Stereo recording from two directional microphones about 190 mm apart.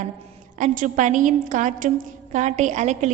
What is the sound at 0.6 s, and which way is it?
A woman's voice, 40° right (ahead or behind).